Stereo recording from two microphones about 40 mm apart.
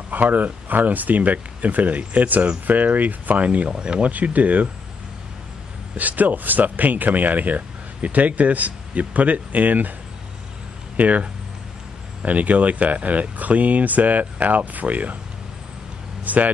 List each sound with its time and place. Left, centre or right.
0.1 s speech: right
3.7 s speech: right
4.1 s speech: right
5.9 s speech: right
11.0 s speech: right
16.3 s speech: right